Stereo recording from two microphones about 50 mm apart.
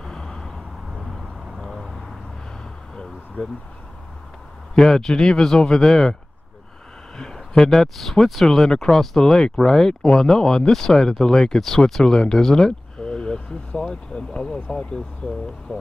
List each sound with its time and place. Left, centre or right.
0.0 s vehicle: centre
0.9 s vehicle: centre
4.7 s speech: centre
7.2 s speech: centre
15.2 s speech: left